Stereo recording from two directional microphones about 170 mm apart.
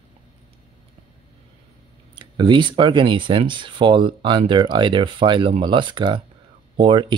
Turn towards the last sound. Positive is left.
turn(degrees=-30)  # may be behind; listen again after turning